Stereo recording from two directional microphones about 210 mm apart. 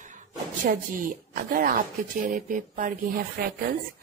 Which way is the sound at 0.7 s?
40° right (ahead or behind).